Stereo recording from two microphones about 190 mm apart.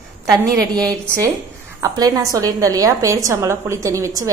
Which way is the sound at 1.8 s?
20° right (ahead or behind).